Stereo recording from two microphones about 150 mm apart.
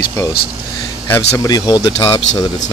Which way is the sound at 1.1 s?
20° left (ahead or behind).